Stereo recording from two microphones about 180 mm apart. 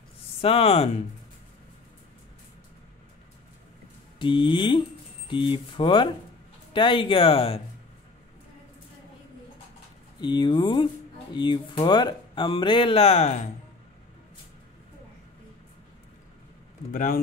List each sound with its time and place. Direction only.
0.4 s speech: 35° left (ahead or behind)
4.2 s speech: 25° left (ahead or behind)
10.2 s speech: 25° left (ahead or behind)
16.9 s speech: 50° left (ahead or behind)